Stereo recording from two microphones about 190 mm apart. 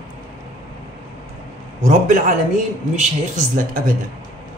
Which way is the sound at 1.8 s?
40° right (ahead or behind).